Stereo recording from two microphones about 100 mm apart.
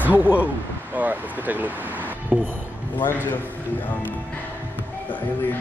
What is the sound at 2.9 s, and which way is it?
Speech, 20° left (ahead or behind).